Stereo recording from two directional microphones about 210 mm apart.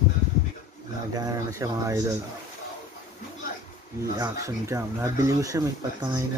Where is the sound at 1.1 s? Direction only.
15° right (ahead or behind).